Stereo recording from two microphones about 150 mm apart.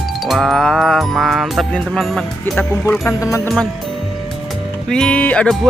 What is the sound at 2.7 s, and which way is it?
Music, 15° left (ahead or behind).